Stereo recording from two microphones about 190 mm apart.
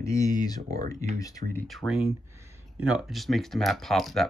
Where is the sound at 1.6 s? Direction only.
Centre (ahead or behind).